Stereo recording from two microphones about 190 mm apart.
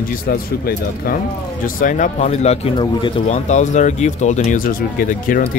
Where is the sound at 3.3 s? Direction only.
40° left (ahead or behind).